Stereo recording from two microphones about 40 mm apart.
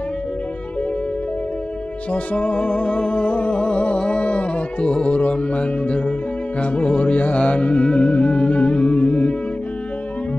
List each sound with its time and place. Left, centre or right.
2.1 s music: left